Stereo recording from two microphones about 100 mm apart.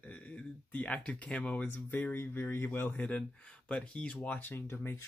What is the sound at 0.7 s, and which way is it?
Speech, 15° left (ahead or behind).